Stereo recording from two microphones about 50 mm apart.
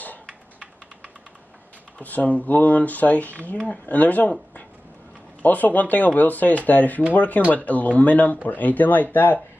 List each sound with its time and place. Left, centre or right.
2.0 s speech: left